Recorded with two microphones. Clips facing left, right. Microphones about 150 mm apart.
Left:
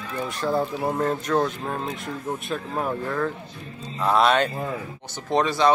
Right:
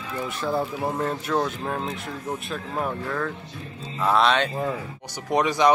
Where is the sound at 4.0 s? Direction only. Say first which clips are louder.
Left 1 dB; centre (ahead or behind).